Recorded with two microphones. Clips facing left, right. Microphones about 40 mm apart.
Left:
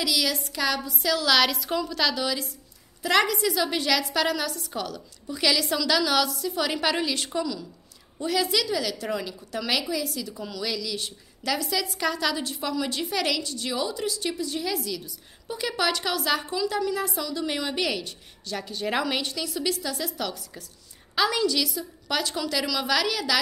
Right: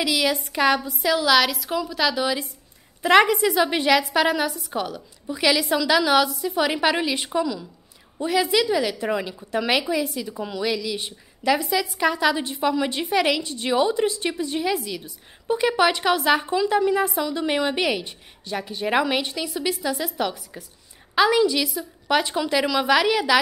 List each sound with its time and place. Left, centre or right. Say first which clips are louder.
0.0 s a woman's voice: right 4 dB; right
1.3 s a woman's voice: even; centre; by 23.4 s right